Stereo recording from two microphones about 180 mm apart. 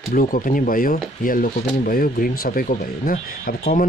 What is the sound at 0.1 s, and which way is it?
Speech, 50° left (ahead or behind).